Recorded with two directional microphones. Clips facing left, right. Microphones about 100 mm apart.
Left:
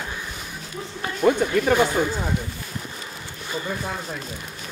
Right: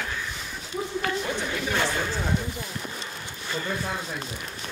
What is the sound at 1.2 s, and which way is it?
Chatter, 50° left (ahead or behind).